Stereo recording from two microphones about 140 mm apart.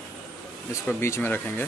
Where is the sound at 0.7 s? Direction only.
20° left (ahead or behind).